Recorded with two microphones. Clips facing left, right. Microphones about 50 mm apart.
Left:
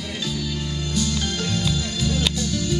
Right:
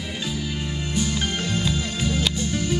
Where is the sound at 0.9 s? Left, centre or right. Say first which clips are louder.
Even; right.